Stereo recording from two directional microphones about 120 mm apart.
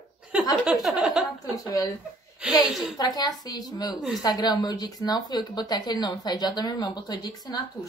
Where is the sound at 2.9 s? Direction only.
35° left (ahead or behind).